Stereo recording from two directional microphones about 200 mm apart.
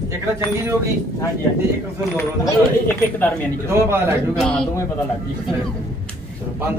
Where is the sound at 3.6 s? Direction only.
10° right (ahead or behind).